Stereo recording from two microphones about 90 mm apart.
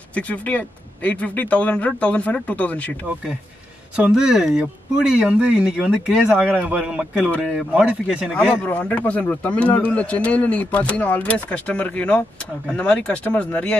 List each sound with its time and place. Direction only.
0.1 s a man's voice: 15° left (ahead or behind)
3.9 s speech: 10° right (ahead or behind)
8.3 s a man's voice: 10° left (ahead or behind)